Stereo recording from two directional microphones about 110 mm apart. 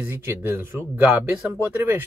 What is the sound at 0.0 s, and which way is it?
Speech, 20° right (ahead or behind).